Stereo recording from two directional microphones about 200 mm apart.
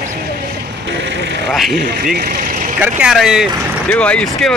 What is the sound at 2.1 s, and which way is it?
Vehicle, 45° right (ahead or behind).